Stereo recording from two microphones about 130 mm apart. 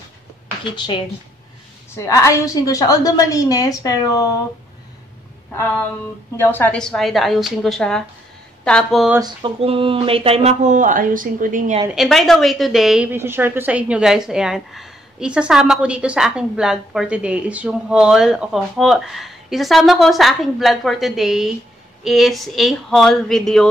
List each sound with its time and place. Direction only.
0.7 s speech: 35° left (ahead or behind)
2.0 s a woman's voice: 20° left (ahead or behind)
6.3 s a woman's voice: 15° left (ahead or behind)
9.2 s speech: 45° right (ahead or behind)
10.6 s speech: 80° right
11.9 s a woman's voice: centre (ahead or behind)
13.1 s a woman's voice: 15° right (ahead or behind); by 23.7 s 5° left (ahead or behind)